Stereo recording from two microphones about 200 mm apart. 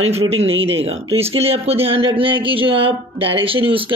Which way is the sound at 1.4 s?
30° right (ahead or behind).